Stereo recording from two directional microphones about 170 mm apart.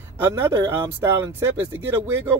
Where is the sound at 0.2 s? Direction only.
15° right (ahead or behind).